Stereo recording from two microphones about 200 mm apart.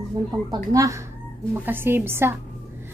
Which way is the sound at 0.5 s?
15° right (ahead or behind).